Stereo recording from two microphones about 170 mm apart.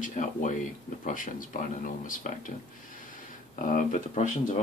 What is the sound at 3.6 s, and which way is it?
Speech, 50° left (ahead or behind).